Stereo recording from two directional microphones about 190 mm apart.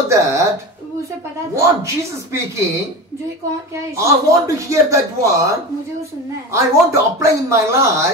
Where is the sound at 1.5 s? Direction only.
15° right (ahead or behind).